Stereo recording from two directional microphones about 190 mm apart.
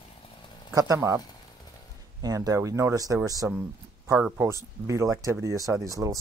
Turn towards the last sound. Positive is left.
turn(degrees=-15)  # may be behind; listen again after turning